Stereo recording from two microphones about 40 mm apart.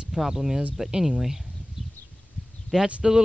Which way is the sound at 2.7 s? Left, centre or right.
Centre.